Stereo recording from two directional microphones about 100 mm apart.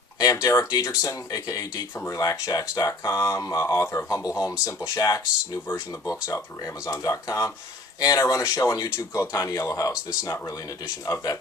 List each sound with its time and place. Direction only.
0.2 s speech: 40° left (ahead or behind)